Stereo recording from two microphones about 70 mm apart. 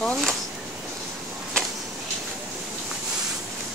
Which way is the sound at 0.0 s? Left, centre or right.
Centre.